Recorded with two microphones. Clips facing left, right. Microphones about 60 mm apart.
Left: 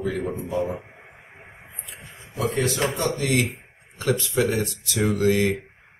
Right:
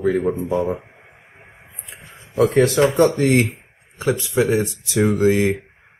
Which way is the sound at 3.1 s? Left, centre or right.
Right.